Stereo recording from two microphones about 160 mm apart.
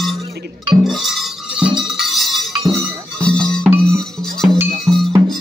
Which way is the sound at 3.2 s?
5° left (ahead or behind).